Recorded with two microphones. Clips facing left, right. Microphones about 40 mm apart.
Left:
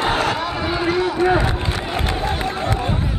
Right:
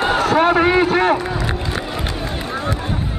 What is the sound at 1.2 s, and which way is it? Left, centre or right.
Speech, left.